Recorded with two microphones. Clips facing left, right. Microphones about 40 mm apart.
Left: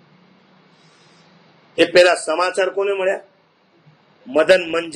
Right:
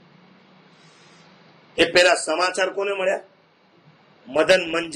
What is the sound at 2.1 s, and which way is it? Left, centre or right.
Speech, left.